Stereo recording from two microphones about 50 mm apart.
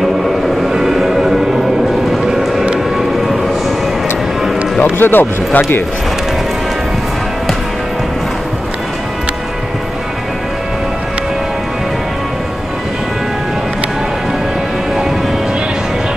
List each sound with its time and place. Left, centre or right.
0.7 s music: centre
4.9 s speech: left